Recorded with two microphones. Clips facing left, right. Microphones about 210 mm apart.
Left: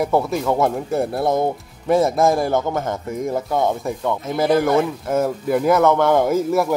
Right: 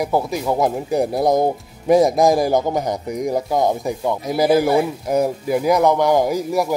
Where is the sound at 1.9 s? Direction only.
15° right (ahead or behind).